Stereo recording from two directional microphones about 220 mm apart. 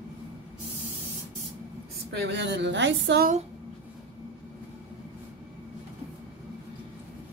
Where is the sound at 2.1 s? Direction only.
50° right (ahead or behind).